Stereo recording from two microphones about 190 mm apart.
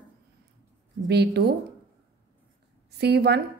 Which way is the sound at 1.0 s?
60° right (ahead or behind).